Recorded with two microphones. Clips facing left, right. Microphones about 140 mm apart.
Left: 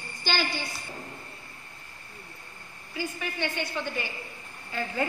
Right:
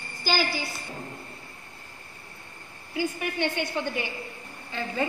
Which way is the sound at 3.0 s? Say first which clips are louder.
Right 4 dB; 15° right (ahead or behind).